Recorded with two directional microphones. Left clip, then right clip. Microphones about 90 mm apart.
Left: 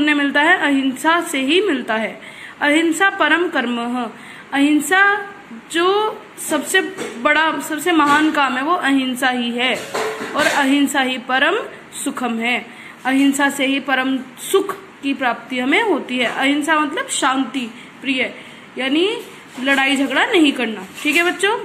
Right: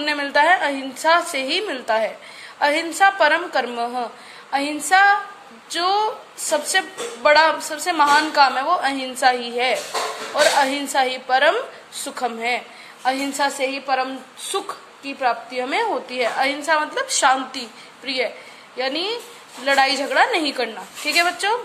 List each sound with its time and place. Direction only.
0.0 s a woman's voice: 40° right (ahead or behind)
5.7 s speech: 45° right (ahead or behind)
6.5 s a woman's voice: 35° right (ahead or behind)
15.2 s a woman's voice: 25° right (ahead or behind); by 18.3 s 45° right (ahead or behind)
18.8 s a woman's voice: 30° right (ahead or behind)